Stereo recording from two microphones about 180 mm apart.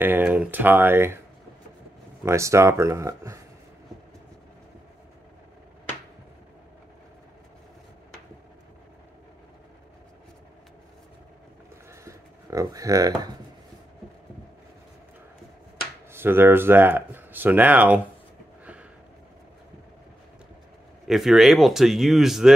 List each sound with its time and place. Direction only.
0.0 s speech: 10° right (ahead or behind)
2.2 s speech: 15° right (ahead or behind)
11.9 s a sound: 15° right (ahead or behind)
16.1 s speech: 10° right (ahead or behind)
21.1 s speech: centre (ahead or behind)